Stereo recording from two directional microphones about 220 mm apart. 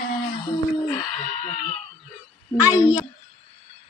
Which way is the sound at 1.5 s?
30° left (ahead or behind).